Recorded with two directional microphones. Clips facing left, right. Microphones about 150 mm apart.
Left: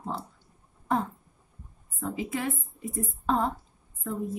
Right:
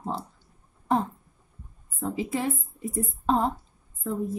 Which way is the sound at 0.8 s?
30° right (ahead or behind).